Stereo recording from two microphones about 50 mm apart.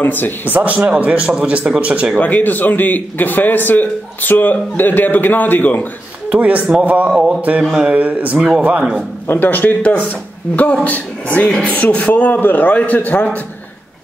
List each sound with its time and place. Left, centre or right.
0.0 s a man's voice: left
0.5 s a man's voice: right
2.1 s a man's voice: left
6.3 s speech: right
7.1 s a man's voice: right
8.0 s speech: right
8.4 s speech: centre
9.3 s a man's voice: left